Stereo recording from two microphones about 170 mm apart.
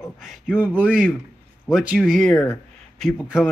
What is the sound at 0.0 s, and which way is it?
A man's voice, centre (ahead or behind).